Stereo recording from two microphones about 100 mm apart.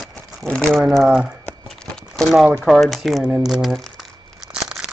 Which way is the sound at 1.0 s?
10° right (ahead or behind).